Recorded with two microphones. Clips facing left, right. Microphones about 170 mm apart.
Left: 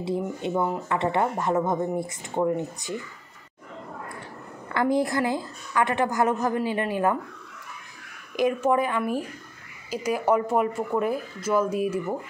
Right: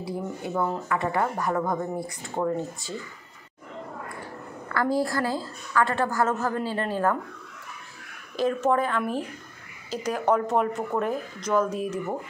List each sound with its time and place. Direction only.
0.0 s speech: 25° left (ahead or behind)
4.6 s a woman's voice: 20° left (ahead or behind)
8.4 s a woman's voice: 10° left (ahead or behind)